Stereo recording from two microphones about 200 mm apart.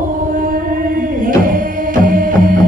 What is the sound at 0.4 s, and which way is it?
Music, 45° right (ahead or behind).